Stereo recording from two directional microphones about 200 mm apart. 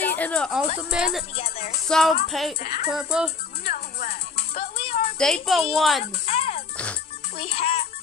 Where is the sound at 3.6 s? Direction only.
50° left (ahead or behind).